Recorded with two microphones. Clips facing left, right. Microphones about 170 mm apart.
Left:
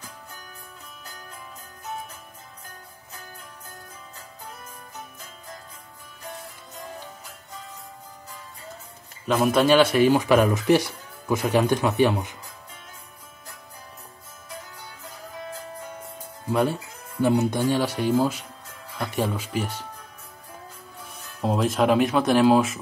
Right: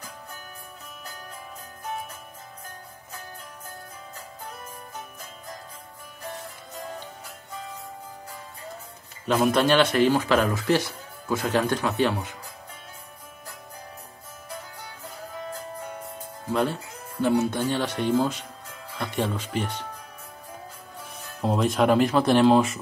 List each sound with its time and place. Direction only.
9.3 s speech: centre (ahead or behind)
17.2 s speech: 15° left (ahead or behind)
21.4 s speech: centre (ahead or behind)